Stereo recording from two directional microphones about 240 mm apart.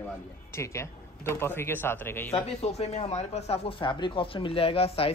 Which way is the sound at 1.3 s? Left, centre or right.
Centre.